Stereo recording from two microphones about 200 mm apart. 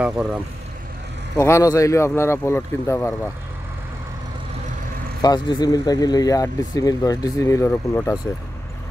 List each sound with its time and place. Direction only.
0.0 s speech: 5° right (ahead or behind)
1.3 s speech: 15° left (ahead or behind)
5.2 s speech: 20° left (ahead or behind)